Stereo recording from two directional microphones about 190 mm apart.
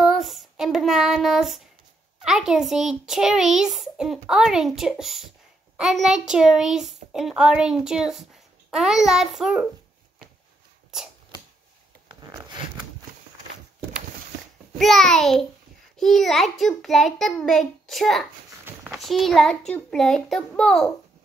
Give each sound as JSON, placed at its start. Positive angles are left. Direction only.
{"t": 0.0, "sound": "child singing", "side_deg": 0}
{"t": 2.2, "sound": "a child's voice", "side_deg": -5}
{"t": 10.9, "sound": "a sound", "side_deg": -5}
{"t": 12.1, "sound": "zipper", "side_deg": -20}
{"t": 14.8, "sound": "a child's voice", "side_deg": 0}